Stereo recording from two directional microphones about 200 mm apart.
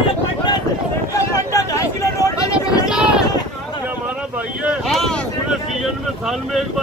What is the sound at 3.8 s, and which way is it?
Boat, 10° right (ahead or behind).